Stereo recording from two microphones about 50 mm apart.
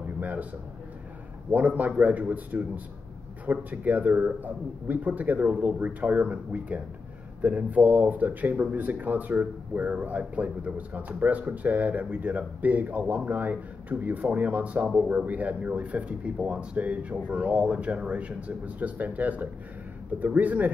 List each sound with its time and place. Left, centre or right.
0.2 s a man's voice: right
1.8 s speech: right